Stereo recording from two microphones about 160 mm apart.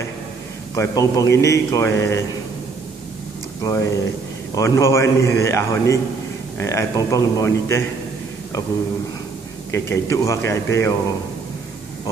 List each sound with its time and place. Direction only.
0.7 s a man's voice: 20° left (ahead or behind)
3.6 s a man's voice: 20° left (ahead or behind)
9.7 s a man's voice: 15° left (ahead or behind)